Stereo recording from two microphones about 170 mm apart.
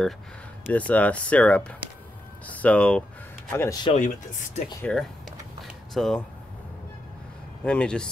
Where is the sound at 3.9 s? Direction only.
45° left (ahead or behind).